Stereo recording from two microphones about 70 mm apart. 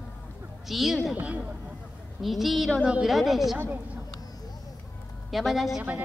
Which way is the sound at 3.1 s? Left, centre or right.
Centre.